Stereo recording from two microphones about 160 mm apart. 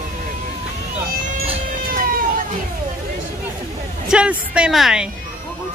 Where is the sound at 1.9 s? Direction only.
60° right (ahead or behind).